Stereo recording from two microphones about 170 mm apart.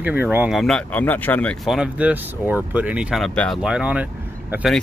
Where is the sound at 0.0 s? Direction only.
10° right (ahead or behind).